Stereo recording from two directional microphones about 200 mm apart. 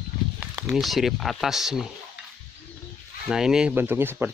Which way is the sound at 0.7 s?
Centre (ahead or behind).